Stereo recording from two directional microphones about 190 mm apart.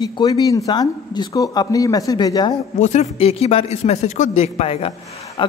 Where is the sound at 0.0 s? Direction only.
20° left (ahead or behind).